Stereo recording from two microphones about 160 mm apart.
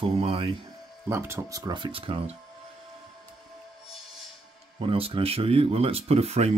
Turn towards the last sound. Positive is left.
turn(degrees=-40)  # may be behind; listen again after turning